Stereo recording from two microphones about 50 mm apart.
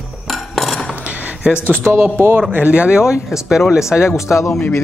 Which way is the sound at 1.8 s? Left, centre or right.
Right.